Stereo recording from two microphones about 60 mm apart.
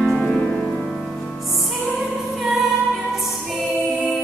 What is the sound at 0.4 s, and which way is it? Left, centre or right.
Music, left.